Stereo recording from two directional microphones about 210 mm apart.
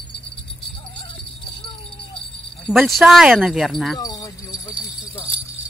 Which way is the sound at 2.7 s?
Centre (ahead or behind).